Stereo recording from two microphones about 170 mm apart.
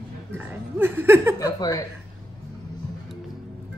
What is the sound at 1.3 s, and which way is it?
Speech, 25° left (ahead or behind).